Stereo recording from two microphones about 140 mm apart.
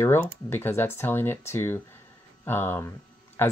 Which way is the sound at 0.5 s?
15° left (ahead or behind).